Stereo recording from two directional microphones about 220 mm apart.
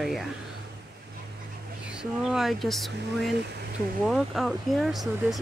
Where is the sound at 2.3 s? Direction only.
Centre (ahead or behind).